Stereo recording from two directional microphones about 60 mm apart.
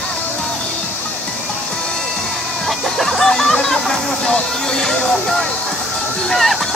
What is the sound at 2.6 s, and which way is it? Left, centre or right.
Chicken, centre.